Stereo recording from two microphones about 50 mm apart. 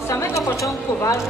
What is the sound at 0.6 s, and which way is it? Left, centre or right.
Speech, left.